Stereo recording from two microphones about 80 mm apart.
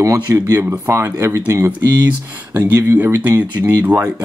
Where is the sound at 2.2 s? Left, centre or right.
Right.